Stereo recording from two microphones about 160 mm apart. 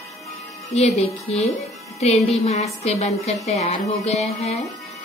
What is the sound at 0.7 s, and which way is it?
Speech, 40° left (ahead or behind).